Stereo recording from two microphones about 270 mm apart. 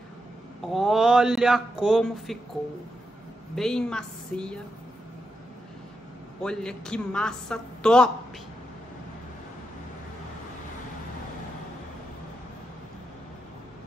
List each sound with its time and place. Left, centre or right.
0.6 s a man's voice: centre
3.5 s a man's voice: centre
6.4 s a man's voice: centre